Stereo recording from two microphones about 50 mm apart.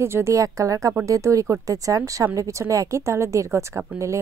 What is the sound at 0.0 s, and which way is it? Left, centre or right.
A woman's voice, right.